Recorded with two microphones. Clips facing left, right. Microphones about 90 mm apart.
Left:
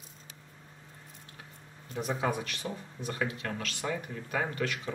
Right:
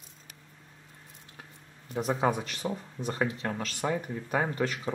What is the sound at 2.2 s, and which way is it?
Speech, 30° right (ahead or behind).